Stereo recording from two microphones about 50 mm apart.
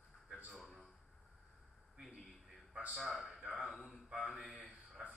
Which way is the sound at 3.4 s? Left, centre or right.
Centre.